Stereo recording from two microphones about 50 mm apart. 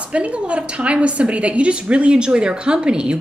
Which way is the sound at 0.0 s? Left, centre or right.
Right.